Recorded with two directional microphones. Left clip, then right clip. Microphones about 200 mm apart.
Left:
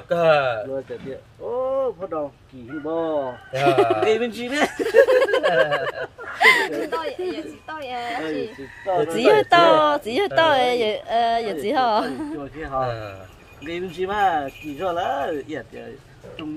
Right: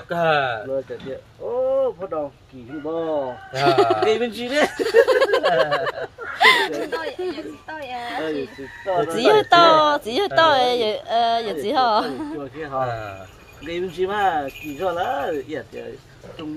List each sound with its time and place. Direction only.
0.1 s speech: 15° left (ahead or behind)
1.7 s a man's voice: 5° right (ahead or behind)
7.7 s a woman's voice: 55° left (ahead or behind)
8.0 s a man's voice: 5° left (ahead or behind)